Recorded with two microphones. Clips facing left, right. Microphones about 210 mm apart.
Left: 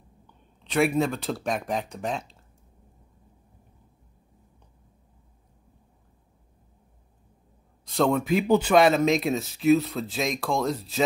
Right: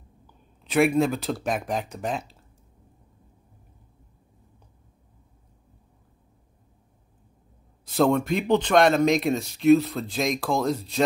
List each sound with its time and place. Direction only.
0.7 s speech: centre (ahead or behind)
7.8 s speech: 5° right (ahead or behind)